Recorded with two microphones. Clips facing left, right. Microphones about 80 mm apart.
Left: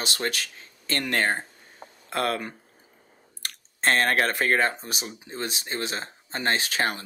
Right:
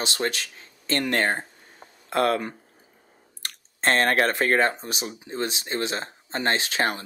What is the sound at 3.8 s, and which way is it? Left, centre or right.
Speech, right.